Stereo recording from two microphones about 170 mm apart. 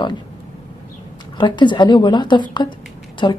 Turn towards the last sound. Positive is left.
turn(degrees=25)  # may be behind; listen again after turning